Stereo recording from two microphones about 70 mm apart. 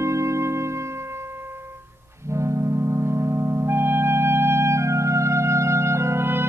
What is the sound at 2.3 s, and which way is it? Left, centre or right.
Music, right.